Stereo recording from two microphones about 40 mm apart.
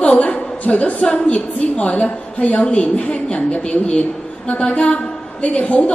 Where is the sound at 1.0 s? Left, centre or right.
Left.